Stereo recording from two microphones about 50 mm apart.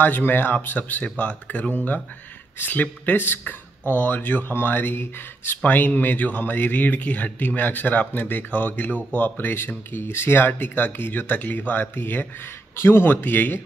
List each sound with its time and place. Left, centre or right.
0.0 s speech: left
5.6 s speech: left
12.7 s speech: left